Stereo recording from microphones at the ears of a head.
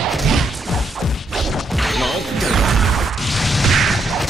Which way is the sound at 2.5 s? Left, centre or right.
Right.